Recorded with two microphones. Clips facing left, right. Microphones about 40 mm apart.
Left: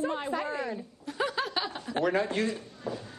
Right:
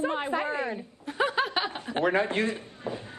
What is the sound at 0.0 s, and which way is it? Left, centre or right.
A woman's voice, right.